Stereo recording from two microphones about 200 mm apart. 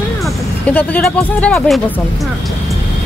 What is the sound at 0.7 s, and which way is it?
Speech, 5° left (ahead or behind).